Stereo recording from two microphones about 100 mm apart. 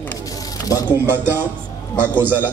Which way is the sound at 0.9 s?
20° right (ahead or behind).